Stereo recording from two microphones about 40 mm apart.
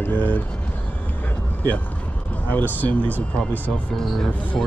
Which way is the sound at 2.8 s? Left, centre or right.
Left.